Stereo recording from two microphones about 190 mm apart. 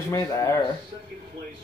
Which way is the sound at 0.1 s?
15° left (ahead or behind).